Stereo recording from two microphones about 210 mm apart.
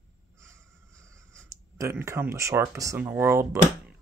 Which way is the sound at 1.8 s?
15° right (ahead or behind).